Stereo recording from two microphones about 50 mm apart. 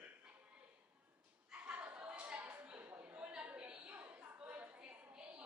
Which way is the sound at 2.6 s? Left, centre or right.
Right.